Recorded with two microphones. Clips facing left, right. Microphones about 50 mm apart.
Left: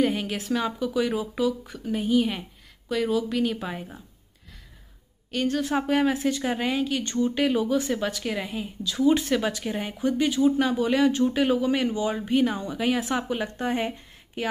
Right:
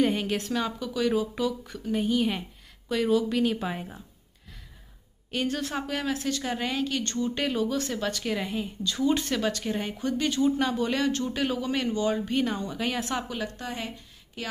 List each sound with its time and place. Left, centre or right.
0.0 s speech: centre
5.3 s speech: centre
5.8 s speech: centre
13.3 s speech: left